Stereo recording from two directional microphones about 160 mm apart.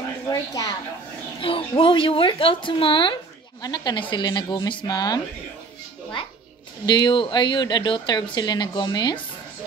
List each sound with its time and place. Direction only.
0.3 s a woman's voice: 20° left (ahead or behind)
1.4 s a woman's voice: 35° left (ahead or behind)
6.9 s speech: 30° left (ahead or behind)